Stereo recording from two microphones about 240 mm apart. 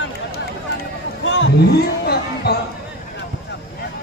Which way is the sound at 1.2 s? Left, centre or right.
Left.